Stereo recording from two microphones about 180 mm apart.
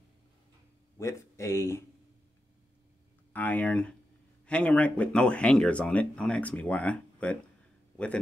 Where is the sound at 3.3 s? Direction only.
10° left (ahead or behind).